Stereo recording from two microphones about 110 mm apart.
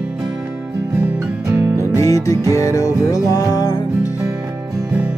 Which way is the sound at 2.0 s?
30° left (ahead or behind).